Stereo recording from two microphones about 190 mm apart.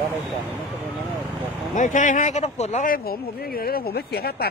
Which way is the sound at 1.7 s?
40° left (ahead or behind).